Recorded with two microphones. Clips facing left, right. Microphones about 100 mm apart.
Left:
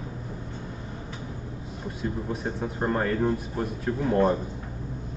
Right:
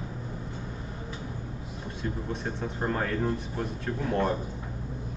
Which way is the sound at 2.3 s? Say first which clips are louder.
Left 3 dB; 10° left (ahead or behind).